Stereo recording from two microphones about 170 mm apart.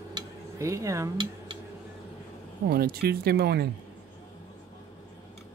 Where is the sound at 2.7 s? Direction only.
60° right (ahead or behind).